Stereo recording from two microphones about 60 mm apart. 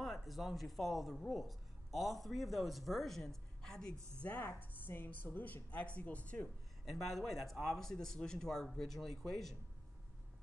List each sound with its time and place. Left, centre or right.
0.0 s speech: centre
4.2 s speech: left
6.8 s speech: centre